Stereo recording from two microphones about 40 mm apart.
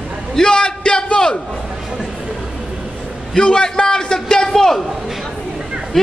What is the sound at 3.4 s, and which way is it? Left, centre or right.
Speech, centre.